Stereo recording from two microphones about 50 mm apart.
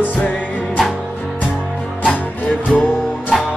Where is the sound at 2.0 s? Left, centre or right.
Left.